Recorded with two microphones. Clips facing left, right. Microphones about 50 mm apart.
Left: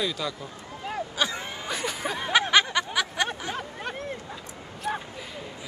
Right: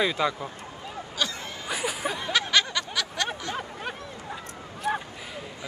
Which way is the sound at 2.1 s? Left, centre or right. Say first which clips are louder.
Left 5 dB; centre.